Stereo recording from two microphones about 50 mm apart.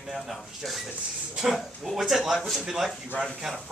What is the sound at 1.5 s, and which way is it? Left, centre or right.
Speech, centre.